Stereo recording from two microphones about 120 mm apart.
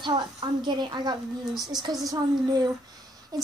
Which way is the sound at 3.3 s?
35° right (ahead or behind).